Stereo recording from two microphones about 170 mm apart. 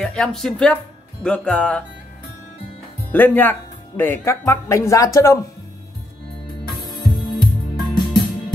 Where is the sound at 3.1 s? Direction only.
10° left (ahead or behind).